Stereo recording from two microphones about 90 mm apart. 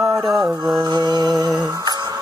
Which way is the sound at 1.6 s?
50° right (ahead or behind).